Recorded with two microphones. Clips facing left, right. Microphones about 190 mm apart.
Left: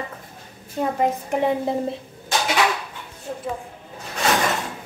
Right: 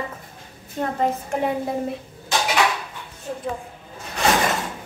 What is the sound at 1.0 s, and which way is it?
Speech, 15° left (ahead or behind).